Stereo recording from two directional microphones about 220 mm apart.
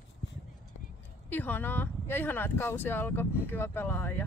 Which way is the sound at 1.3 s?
10° left (ahead or behind).